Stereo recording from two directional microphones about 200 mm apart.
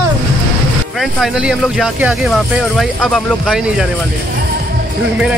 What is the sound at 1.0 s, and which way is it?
Speech, centre (ahead or behind).